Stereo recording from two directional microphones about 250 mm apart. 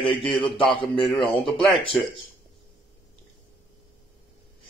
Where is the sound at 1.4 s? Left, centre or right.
Centre.